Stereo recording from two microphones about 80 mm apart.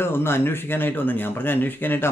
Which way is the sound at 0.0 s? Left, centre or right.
Left.